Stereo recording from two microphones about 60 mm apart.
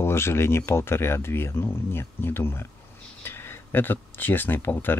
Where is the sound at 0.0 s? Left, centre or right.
Left.